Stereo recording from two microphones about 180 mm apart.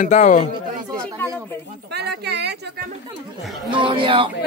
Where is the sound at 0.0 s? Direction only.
45° left (ahead or behind).